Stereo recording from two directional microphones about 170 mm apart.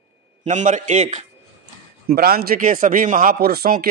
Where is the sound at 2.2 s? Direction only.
65° right (ahead or behind).